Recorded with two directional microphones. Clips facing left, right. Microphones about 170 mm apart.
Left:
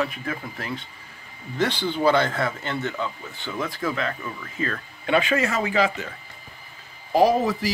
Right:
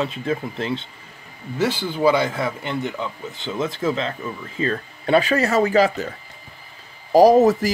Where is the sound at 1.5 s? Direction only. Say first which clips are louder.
Right 2 dB; 5° right (ahead or behind); by 6.1 s 40° right (ahead or behind).